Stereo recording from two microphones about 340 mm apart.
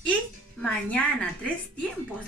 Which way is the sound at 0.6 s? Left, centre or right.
Centre.